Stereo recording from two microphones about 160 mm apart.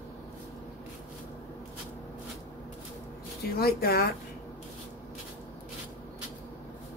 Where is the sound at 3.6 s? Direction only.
70° left (ahead or behind).